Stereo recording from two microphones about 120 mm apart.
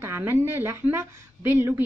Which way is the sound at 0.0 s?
20° right (ahead or behind).